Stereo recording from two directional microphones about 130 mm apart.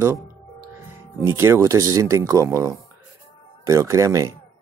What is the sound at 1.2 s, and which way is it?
Speech, 20° right (ahead or behind).